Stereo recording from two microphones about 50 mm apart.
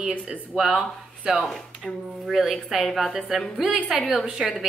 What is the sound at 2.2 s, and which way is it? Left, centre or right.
A woman's voice, centre.